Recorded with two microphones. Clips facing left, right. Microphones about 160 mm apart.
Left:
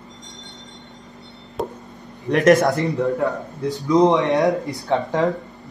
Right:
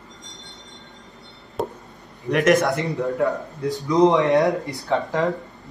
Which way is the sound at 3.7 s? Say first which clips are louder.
Left 1 dB; 20° left (ahead or behind).